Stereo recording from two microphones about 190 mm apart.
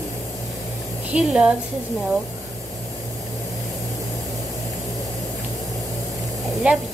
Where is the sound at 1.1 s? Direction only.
5° right (ahead or behind).